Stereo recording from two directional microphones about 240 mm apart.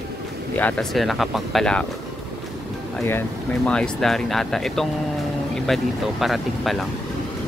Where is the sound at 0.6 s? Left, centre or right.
Centre.